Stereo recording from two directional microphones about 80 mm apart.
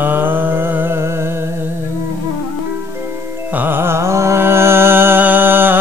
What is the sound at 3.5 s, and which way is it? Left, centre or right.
Music, right.